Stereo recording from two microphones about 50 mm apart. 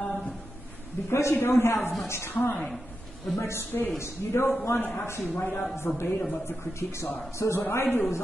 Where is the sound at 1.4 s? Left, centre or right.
Left.